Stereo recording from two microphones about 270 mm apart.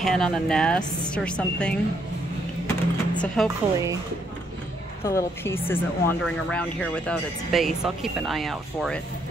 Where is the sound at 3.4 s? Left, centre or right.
Centre.